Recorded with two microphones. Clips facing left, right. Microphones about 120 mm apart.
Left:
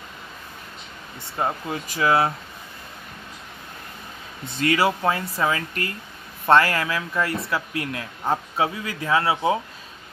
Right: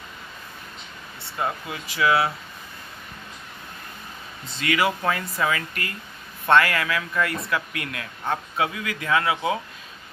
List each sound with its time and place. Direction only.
1.4 s speech: 35° left (ahead or behind)
4.6 s speech: 35° left (ahead or behind)